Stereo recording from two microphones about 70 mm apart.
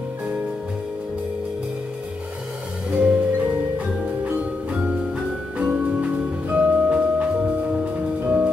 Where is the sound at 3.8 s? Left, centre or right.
Right.